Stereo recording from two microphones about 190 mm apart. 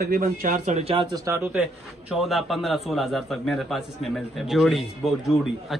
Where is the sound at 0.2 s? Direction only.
40° right (ahead or behind).